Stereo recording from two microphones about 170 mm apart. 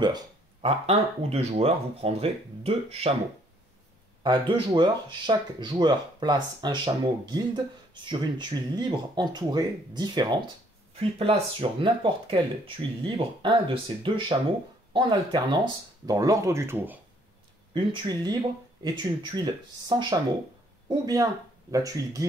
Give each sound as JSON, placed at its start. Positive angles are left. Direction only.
{"t": 0.0, "sound": "speech", "side_deg": -30}
{"t": 4.2, "sound": "speech", "side_deg": -25}
{"t": 17.7, "sound": "speech", "side_deg": -25}